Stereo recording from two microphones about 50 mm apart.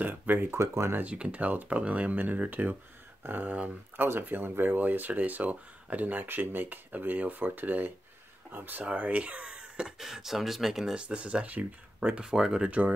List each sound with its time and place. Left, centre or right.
0.0 s speech: right
0.5 s speech: right
1.0 s speech: right
9.6 s a sound: centre
9.9 s speech: centre
11.0 s speech: right
12.2 s speech: centre